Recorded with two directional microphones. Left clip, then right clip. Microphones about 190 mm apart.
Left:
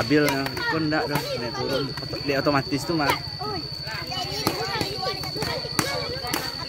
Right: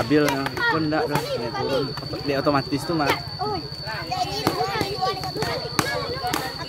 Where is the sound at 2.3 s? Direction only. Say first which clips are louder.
Right 1 dB; 20° left (ahead or behind).